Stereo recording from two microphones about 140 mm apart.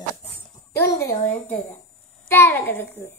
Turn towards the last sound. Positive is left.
turn(degrees=15)  # may be behind; listen again after turning